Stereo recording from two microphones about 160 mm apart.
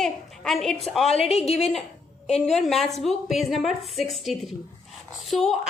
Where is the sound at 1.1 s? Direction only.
40° left (ahead or behind).